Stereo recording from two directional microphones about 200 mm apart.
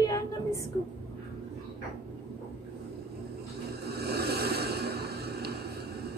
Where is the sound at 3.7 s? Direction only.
55° right (ahead or behind).